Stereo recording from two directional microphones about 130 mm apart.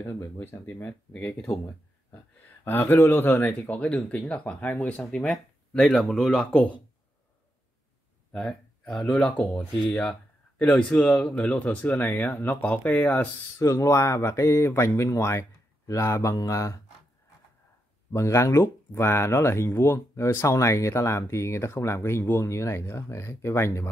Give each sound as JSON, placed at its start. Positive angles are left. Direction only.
{"t": 0.0, "sound": "speech", "side_deg": 15}
{"t": 2.6, "sound": "speech", "side_deg": 15}
{"t": 8.3, "sound": "speech", "side_deg": 0}
{"t": 13.6, "sound": "speech", "side_deg": 25}
{"t": 18.1, "sound": "speech", "side_deg": 20}